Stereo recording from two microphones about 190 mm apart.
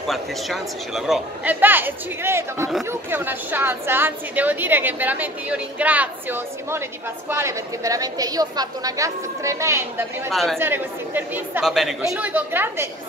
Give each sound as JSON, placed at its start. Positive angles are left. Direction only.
{"t": 0.1, "sound": "a woman's voice", "side_deg": 0}
{"t": 10.3, "sound": "a woman's voice", "side_deg": 0}
{"t": 10.6, "sound": "a woman's voice", "side_deg": -10}